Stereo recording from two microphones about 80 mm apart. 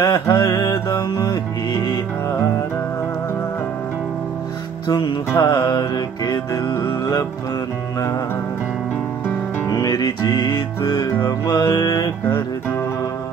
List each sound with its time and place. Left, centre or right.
0.0 s mantra: left
1.2 s music: left
4.8 s music: left
9.7 s music: left
11.2 s mantra: left